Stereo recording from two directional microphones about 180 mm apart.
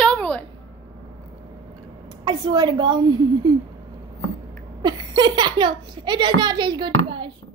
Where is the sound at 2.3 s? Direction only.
25° right (ahead or behind).